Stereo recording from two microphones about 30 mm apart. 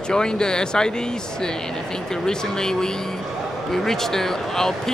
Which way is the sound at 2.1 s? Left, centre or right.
Left.